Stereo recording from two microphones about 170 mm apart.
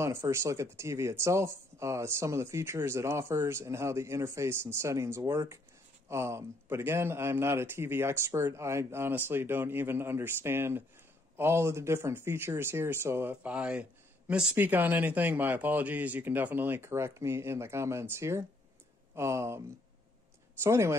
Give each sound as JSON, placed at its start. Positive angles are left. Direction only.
{"t": 0.0, "sound": "speech", "side_deg": -15}
{"t": 20.6, "sound": "speech", "side_deg": -15}